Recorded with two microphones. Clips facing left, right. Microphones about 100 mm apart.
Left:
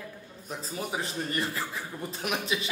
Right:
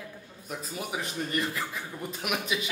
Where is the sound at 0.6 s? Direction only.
30° left (ahead or behind).